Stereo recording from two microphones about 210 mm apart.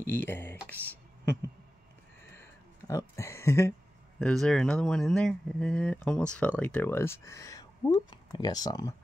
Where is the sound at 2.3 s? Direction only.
10° left (ahead or behind).